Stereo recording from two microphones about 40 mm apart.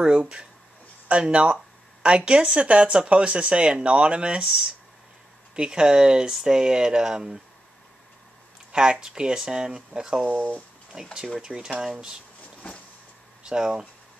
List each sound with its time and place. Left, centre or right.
0.0 s speech: right
5.6 s speech: right
8.7 s speech: centre
10.2 s speech: right
11.4 s speech: centre
13.4 s speech: right